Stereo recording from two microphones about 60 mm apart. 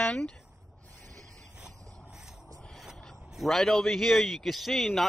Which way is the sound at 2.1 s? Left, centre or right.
Centre.